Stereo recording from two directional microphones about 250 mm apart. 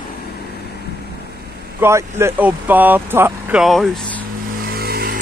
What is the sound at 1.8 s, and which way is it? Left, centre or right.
Speech, centre.